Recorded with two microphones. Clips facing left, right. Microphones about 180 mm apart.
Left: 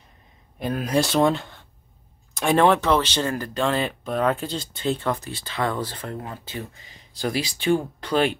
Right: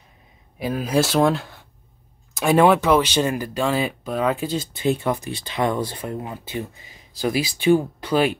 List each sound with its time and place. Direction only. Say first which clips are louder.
0.6 s speech: right 2 dB; 5° right (ahead or behind)